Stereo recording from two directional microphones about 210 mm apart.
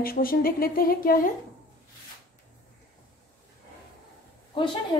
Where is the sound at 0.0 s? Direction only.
45° left (ahead or behind).